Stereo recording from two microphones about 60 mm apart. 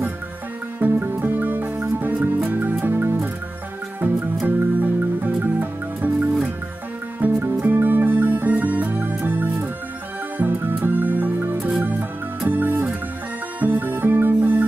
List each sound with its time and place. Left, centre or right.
0.7 s music: right
4.5 s music: right